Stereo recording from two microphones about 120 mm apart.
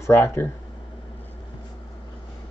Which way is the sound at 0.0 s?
20° left (ahead or behind).